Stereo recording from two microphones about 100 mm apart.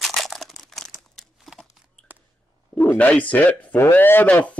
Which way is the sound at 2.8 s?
15° left (ahead or behind).